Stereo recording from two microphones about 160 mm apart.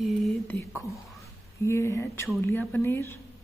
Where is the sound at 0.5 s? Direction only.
20° left (ahead or behind).